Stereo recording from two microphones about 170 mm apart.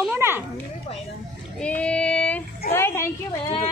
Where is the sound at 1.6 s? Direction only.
5° left (ahead or behind).